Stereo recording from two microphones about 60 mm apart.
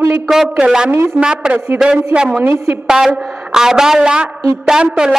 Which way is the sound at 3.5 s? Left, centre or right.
Centre.